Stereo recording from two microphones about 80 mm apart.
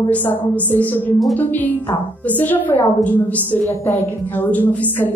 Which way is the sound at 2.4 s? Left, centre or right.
Left.